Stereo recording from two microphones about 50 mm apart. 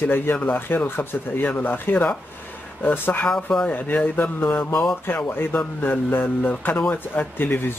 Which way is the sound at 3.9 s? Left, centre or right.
Left.